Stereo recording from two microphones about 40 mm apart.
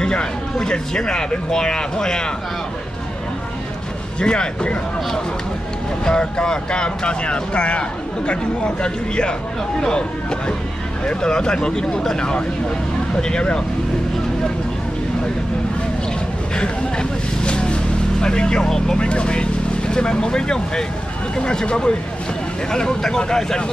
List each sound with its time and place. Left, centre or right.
0.0 s speech: left
4.2 s speech: left
11.1 s speech: centre
16.5 s vehicle: left
18.2 s speech: left
18.6 s speech: centre
18.9 s speech: left